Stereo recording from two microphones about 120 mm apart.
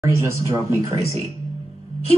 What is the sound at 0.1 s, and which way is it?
Speech, 25° right (ahead or behind).